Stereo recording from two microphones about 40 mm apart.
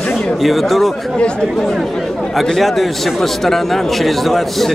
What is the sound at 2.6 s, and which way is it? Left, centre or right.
A man's voice, centre.